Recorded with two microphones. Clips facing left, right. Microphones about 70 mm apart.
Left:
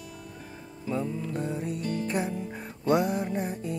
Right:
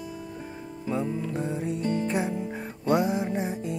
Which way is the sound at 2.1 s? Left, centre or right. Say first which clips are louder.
Right 2 dB; centre.